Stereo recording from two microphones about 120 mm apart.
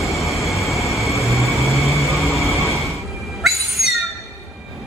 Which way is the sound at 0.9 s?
25° left (ahead or behind).